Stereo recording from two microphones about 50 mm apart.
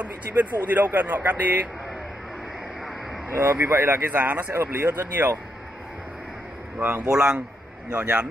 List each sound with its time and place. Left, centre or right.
0.0 s speech: right
3.3 s speech: right
4.1 s speech: right
4.6 s speech: right
7.0 s a man's voice: centre